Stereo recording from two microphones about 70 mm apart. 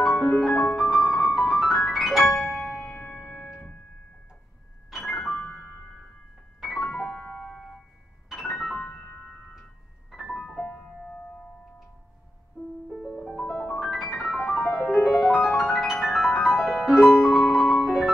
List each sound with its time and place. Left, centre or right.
0.2 s music: centre
3.0 s music: centre
4.9 s music: centre
6.8 s music: centre
10.5 s music: left
10.8 s music: centre
12.6 s music: left
12.9 s music: centre